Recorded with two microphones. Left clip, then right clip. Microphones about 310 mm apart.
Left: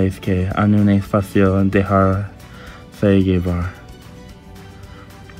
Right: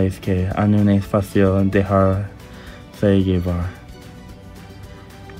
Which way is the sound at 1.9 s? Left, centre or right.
Left.